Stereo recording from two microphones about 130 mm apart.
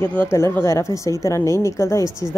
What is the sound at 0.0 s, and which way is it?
Speech, 15° left (ahead or behind).